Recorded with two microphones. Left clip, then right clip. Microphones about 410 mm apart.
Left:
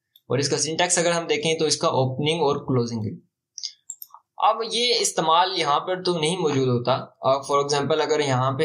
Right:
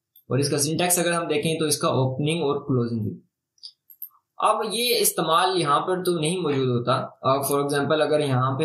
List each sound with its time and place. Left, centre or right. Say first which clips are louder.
0.3 s speech: left 1 dB; centre
4.4 s speech: left 1 dB; centre